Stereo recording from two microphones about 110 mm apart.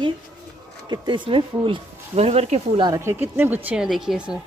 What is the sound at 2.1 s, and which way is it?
Speech, 70° right (ahead or behind).